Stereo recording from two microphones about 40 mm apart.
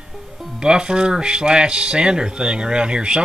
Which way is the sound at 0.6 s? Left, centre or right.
Right.